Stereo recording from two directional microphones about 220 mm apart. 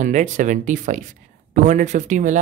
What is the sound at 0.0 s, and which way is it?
Speech, 35° right (ahead or behind).